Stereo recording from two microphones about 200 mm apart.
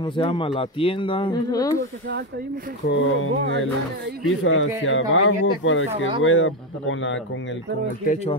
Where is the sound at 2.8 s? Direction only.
75° left (ahead or behind).